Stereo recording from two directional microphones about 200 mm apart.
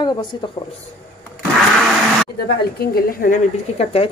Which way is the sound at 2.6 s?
50° left (ahead or behind).